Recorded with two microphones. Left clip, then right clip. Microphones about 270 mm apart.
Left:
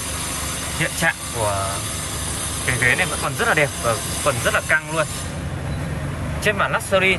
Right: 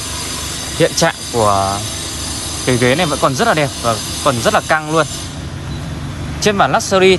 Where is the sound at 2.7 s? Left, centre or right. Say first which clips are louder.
Right 5 dB; centre.